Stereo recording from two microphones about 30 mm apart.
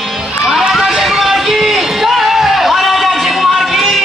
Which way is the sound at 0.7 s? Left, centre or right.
Centre.